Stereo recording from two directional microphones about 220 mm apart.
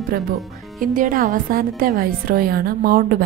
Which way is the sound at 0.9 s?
35° right (ahead or behind).